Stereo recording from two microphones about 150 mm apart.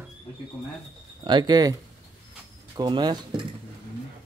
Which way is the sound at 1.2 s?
30° right (ahead or behind).